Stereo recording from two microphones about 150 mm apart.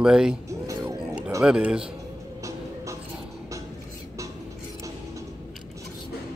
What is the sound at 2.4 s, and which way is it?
Music, 20° right (ahead or behind).